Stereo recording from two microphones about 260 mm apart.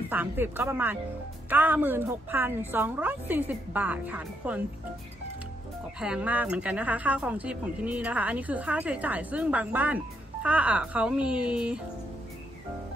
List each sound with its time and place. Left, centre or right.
0.1 s a woman's voice: centre
5.9 s a woman's voice: centre